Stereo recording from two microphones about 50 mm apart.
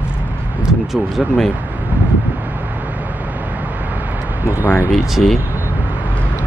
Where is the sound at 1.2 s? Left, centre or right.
Centre.